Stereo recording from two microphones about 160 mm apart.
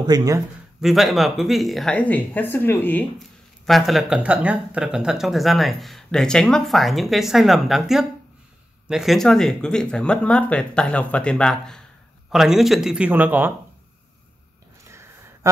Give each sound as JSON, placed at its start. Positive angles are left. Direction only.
{"t": 0.0, "sound": "speech", "side_deg": -25}
{"t": 0.7, "sound": "speech", "side_deg": 0}
{"t": 3.2, "sound": "speech", "side_deg": 0}
{"t": 14.9, "sound": "a sound", "side_deg": -20}